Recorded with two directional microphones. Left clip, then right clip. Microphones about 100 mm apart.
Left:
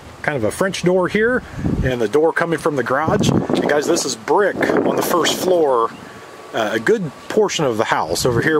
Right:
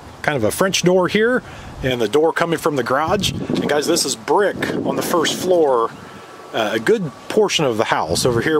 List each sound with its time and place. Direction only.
0.2 s speech: 20° right (ahead or behind)
4.9 s speech: centre (ahead or behind)
6.5 s speech: 10° right (ahead or behind)